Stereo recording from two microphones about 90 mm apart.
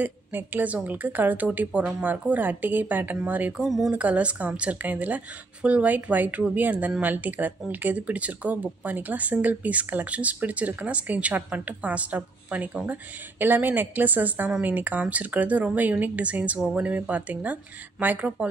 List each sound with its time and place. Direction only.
0.0 s speech: 20° right (ahead or behind)
3.5 s a sound: centre (ahead or behind)
3.9 s speech: 15° right (ahead or behind)